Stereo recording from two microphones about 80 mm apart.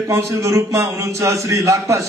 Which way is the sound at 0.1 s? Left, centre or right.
Right.